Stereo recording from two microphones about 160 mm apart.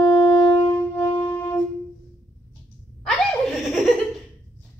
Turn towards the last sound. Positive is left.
turn(degrees=0)  # may be behind; listen again after turning